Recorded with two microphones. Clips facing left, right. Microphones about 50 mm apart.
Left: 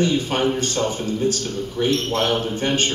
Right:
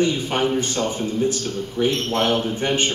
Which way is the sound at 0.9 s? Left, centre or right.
Right.